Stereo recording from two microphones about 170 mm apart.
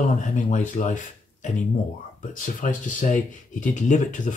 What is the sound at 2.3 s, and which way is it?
Speech, 50° left (ahead or behind).